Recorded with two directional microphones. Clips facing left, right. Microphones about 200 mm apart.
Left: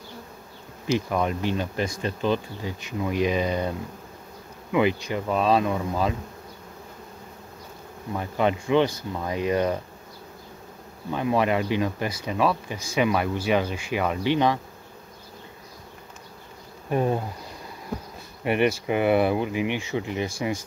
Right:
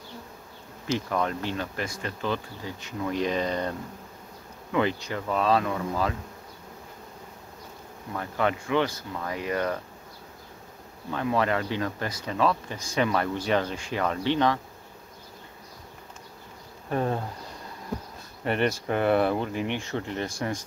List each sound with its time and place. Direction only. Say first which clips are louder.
0.9 s speech: left 3 dB; 15° left (ahead or behind)
4.7 s speech: left 4 dB; 15° left (ahead or behind)
8.1 s speech: left 3 dB; 20° left (ahead or behind)
11.1 s speech: left 3 dB; 15° left (ahead or behind)
16.9 s speech: left 3 dB; 15° left (ahead or behind)
18.4 s speech: left 3 dB; 10° left (ahead or behind)